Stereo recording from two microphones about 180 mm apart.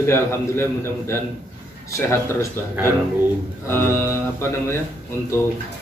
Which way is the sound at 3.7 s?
15° left (ahead or behind).